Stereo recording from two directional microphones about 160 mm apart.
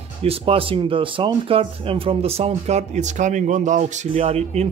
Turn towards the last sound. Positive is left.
turn(degrees=-40)  # may be behind; listen again after turning